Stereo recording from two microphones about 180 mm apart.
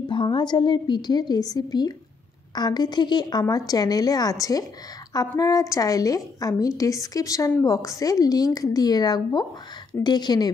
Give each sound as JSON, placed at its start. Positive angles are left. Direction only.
{"t": 0.1, "sound": "a woman's voice", "side_deg": 25}